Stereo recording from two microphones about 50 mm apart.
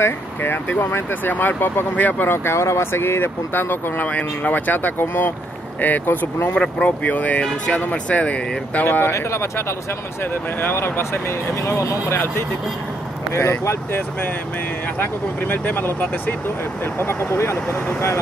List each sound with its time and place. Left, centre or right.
0.0 s speech: left
1.3 s speech: left
2.2 s speech: left
4.1 s speech: left
5.0 s speech: left
5.8 s speech: left
6.5 s speech: left
8.8 s speech: left
9.1 s speech: left
10.3 s speech: left
13.3 s speech: left
15.0 s speech: left